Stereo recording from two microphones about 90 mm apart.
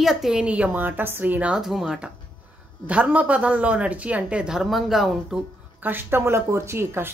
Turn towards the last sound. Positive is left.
turn(degrees=-25)  # may be behind; listen again after turning